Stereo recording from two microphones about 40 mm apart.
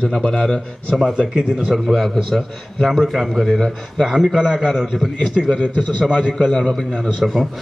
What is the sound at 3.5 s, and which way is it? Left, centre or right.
Speech, centre.